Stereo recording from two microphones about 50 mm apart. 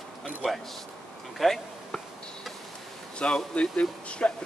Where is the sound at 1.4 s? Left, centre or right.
Centre.